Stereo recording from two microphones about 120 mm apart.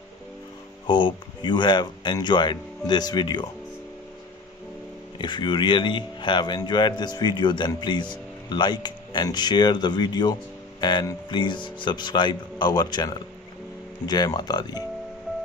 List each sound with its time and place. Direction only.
0.8 s speech: 40° left (ahead or behind)
5.2 s speech: 40° left (ahead or behind)